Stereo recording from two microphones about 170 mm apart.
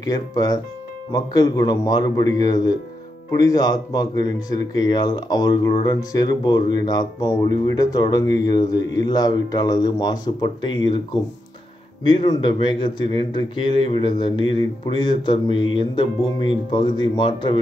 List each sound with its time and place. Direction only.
0.0 s speech: 20° left (ahead or behind)
12.1 s speech: 30° left (ahead or behind)